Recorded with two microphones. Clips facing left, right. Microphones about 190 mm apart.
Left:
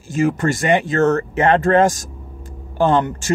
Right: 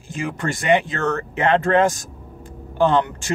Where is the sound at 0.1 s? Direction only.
45° left (ahead or behind).